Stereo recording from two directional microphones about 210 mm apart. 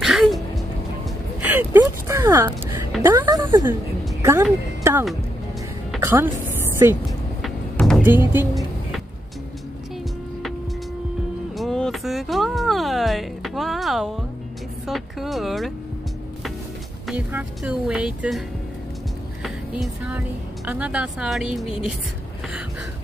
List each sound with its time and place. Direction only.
0.0 s music: centre (ahead or behind)
1.4 s vehicle: 10° right (ahead or behind)
1.8 s a sound: 10° right (ahead or behind)
3.0 s a woman's voice: 15° right (ahead or behind)
5.9 s music: 10° right (ahead or behind)
7.1 s vehicle: centre (ahead or behind)
8.0 s speech: 10° right (ahead or behind)
11.5 s a sound: centre (ahead or behind)
14.9 s music: centre (ahead or behind)
17.1 s a woman's voice: 5° right (ahead or behind)
19.4 s a sound: 5° right (ahead or behind)
20.6 s a woman's voice: 5° right (ahead or behind)